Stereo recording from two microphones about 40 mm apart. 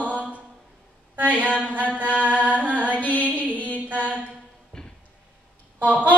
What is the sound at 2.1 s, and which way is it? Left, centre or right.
Mantra, right.